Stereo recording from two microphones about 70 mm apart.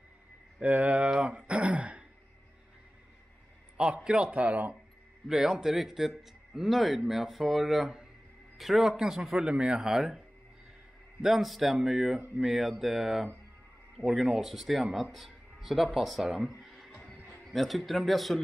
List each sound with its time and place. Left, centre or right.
0.6 s speech: right
3.7 s speech: centre
5.3 s a man's voice: centre